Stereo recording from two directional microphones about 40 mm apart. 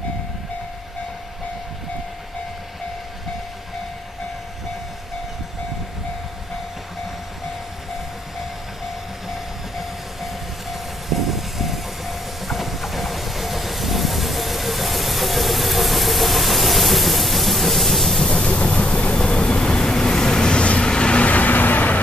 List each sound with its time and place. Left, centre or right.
9.3 s train: centre
18.2 s train: centre
18.7 s vehicle: left